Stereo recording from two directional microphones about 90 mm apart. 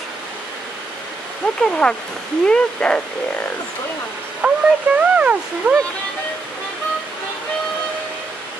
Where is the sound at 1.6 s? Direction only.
10° left (ahead or behind).